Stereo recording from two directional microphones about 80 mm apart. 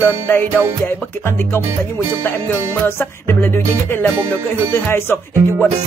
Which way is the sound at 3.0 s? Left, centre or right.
Left.